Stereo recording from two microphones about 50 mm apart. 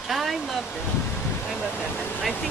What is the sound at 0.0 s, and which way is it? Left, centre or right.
Waterfall, centre.